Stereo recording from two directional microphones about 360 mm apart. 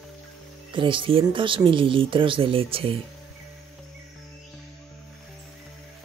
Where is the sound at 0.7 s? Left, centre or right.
Centre.